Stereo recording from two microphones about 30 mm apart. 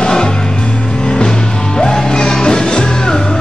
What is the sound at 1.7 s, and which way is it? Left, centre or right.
Music, left.